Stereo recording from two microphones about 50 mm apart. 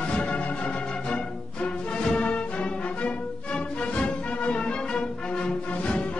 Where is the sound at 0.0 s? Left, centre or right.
Left.